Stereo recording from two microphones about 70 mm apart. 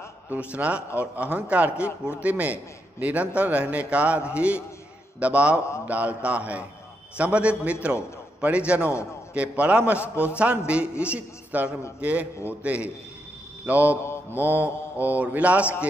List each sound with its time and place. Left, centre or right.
0.3 s a man's voice: right
14.0 s mantra: left
14.4 s a man's voice: right